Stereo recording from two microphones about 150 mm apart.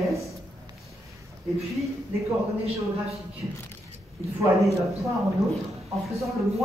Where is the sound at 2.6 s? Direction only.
45° right (ahead or behind).